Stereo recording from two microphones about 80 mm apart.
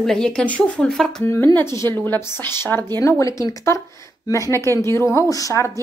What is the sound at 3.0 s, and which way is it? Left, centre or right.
Speech, left.